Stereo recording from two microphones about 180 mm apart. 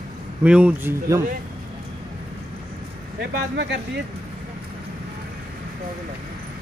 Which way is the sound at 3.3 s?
75° right (ahead or behind).